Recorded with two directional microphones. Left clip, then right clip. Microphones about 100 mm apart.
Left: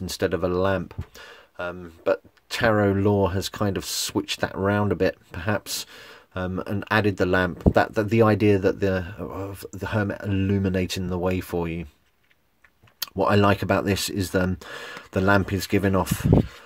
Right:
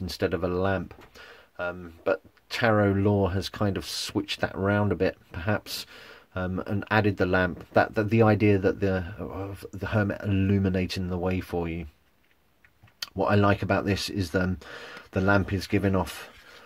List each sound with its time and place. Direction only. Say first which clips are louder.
0.0 s speech: left 3 dB; 25° left (ahead or behind)
13.0 s speech: left 4 dB; 35° left (ahead or behind)